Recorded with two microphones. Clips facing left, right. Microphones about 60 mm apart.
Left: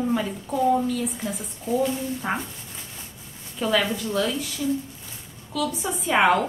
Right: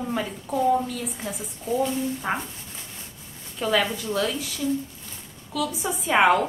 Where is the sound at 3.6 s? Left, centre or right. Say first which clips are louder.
Even; centre.